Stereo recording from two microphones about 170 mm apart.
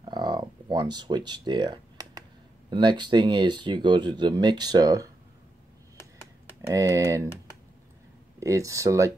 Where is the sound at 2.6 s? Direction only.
25° right (ahead or behind).